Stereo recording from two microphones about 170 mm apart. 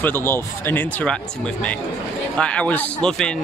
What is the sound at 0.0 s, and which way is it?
Speech, 15° left (ahead or behind).